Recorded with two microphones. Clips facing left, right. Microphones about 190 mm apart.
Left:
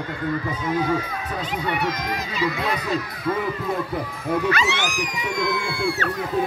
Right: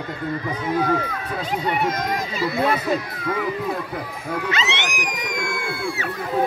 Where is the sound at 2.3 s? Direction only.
45° right (ahead or behind).